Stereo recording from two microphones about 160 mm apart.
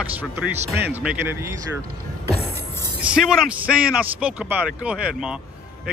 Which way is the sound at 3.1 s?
5° right (ahead or behind).